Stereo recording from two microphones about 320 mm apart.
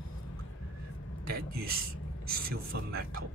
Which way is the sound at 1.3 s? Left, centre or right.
Right.